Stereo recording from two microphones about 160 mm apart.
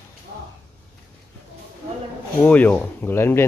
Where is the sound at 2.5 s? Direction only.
10° left (ahead or behind).